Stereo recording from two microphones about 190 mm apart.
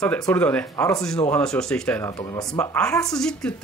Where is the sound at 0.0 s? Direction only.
5° left (ahead or behind).